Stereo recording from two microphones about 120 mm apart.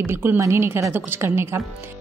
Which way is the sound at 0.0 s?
20° right (ahead or behind).